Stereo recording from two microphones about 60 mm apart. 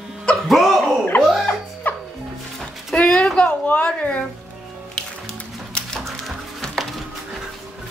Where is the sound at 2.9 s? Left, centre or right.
Centre.